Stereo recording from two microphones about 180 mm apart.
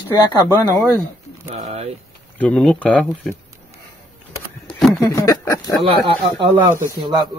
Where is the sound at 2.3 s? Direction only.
5° left (ahead or behind).